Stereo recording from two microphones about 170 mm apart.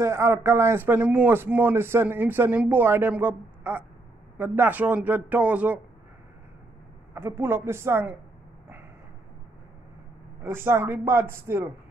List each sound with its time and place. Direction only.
0.0 s a man's voice: 15° right (ahead or behind)
7.2 s a man's voice: 15° right (ahead or behind)
10.4 s a man's voice: 15° right (ahead or behind)